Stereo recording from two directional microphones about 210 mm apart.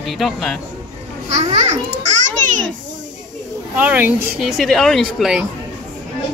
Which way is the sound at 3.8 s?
10° right (ahead or behind).